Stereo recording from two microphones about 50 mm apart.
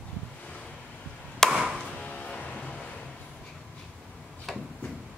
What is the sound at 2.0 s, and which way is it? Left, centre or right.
Music, left.